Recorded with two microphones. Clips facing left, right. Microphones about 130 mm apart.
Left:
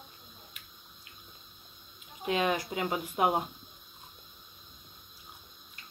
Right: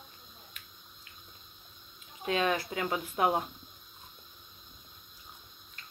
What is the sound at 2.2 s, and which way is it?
Speech, 15° left (ahead or behind).